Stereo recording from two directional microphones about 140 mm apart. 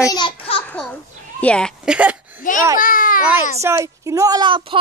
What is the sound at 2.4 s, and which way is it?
Babbling, 70° left (ahead or behind).